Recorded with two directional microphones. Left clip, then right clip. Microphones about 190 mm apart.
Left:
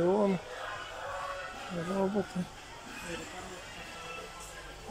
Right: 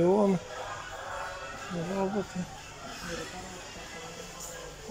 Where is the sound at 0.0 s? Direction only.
5° right (ahead or behind).